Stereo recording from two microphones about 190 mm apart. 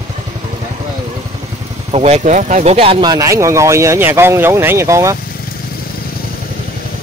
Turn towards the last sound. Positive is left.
turn(degrees=-15)  # may be behind; listen again after turning